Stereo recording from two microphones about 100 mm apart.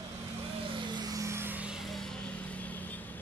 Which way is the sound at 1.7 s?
Centre (ahead or behind).